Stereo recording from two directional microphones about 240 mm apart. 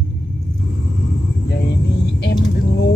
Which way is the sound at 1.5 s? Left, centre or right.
Left.